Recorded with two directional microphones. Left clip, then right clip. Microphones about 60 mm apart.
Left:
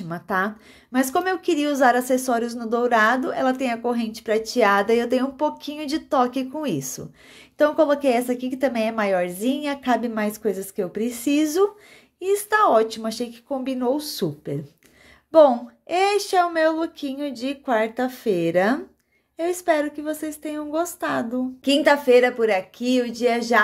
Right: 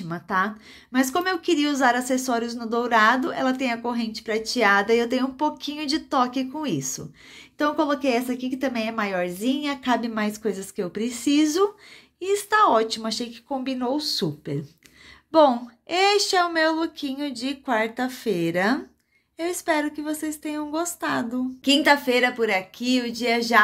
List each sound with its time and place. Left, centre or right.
0.1 s a woman's voice: left
5.6 s a woman's voice: left
9.8 s a woman's voice: left
15.5 s a woman's voice: left